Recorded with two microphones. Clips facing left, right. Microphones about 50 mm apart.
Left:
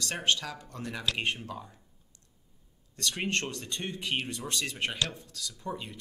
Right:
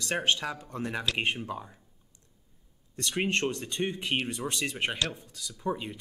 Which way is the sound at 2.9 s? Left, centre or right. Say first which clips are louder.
Right 3 dB; centre.